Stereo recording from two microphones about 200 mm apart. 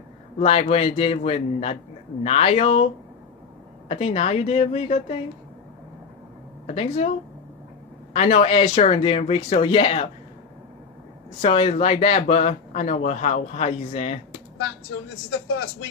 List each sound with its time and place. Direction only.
0.4 s speech: 30° left (ahead or behind)
3.9 s speech: 30° left (ahead or behind)
6.6 s speech: 30° left (ahead or behind)
8.1 s speech: 35° left (ahead or behind)
11.4 s speech: 30° left (ahead or behind)